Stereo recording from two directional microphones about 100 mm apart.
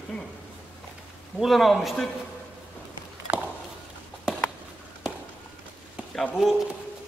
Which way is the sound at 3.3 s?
25° right (ahead or behind).